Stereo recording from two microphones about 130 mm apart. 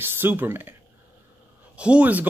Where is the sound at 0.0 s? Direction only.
15° right (ahead or behind).